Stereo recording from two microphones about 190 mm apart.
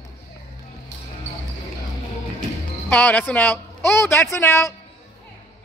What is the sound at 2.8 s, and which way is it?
Speech, 5° left (ahead or behind).